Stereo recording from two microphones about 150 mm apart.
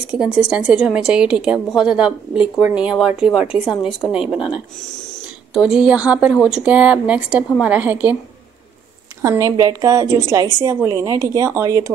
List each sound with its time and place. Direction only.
0.2 s a woman's voice: 5° right (ahead or behind)
9.2 s a woman's voice: 20° right (ahead or behind)